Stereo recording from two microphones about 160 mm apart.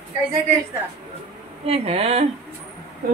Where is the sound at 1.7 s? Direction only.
40° right (ahead or behind).